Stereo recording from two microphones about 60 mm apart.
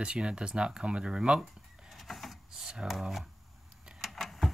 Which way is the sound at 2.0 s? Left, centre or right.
Centre.